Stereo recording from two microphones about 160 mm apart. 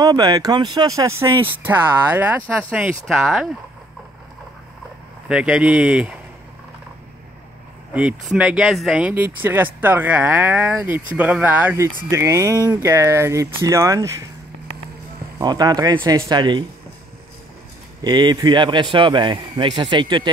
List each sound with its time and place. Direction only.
0.0 s speech: 25° right (ahead or behind); by 3.4 s 5° right (ahead or behind)
5.3 s speech: 5° right (ahead or behind)
7.9 s speech: 10° right (ahead or behind)
15.3 s speech: 25° right (ahead or behind)
18.0 s speech: 25° right (ahead or behind)